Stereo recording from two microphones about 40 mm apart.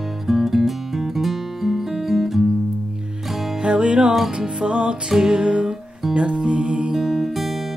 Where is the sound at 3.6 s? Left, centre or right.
Right.